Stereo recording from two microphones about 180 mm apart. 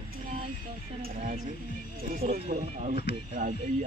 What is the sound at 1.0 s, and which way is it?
Speech, 50° right (ahead or behind).